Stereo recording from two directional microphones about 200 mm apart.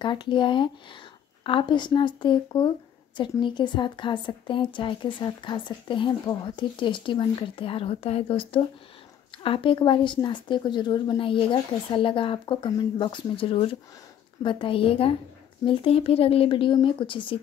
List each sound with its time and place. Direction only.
0.0 s a woman's voice: 25° left (ahead or behind)